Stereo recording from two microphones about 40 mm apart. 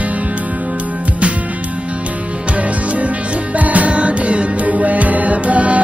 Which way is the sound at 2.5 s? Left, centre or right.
Right.